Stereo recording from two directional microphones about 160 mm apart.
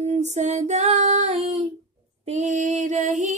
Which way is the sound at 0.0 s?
45° right (ahead or behind).